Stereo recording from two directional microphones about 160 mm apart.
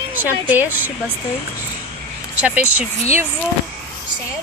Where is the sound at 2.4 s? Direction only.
10° right (ahead or behind).